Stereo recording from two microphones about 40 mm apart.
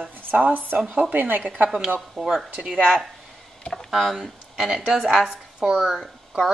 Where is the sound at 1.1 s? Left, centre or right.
Right.